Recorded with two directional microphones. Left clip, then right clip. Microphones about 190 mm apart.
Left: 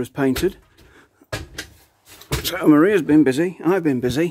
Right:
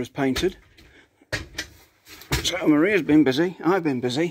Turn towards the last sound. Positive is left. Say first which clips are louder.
# left 4 dB
turn(degrees=25)  # may be behind; listen again after turning